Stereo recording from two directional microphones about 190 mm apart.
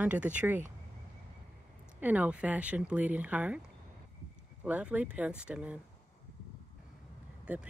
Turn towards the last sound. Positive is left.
turn(degrees=-5)  # may be behind; listen again after turning